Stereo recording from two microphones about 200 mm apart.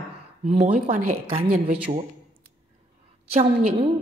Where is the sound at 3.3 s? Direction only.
30° right (ahead or behind).